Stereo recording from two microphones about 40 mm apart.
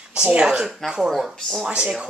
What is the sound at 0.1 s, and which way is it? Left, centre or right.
Speech, right.